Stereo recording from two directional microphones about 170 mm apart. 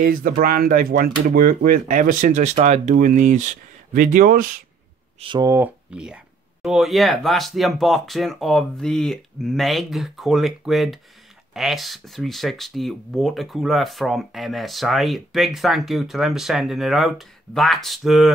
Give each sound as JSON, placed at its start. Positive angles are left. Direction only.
{"t": 0.0, "sound": "speech", "side_deg": -55}
{"t": 5.2, "sound": "speech", "side_deg": -25}
{"t": 5.5, "sound": "speech", "side_deg": -10}